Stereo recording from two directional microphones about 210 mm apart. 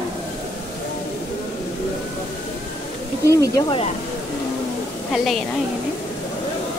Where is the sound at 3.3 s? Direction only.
15° left (ahead or behind).